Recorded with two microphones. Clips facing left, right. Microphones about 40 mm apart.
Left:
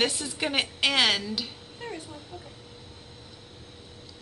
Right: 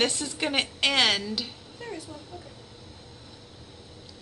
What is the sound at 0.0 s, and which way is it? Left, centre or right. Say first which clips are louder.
Speech: right 1 dB; centre.